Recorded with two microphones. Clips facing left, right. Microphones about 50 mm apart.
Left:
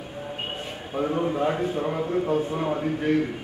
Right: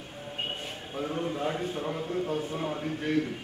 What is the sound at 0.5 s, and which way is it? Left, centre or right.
A man's voice, left.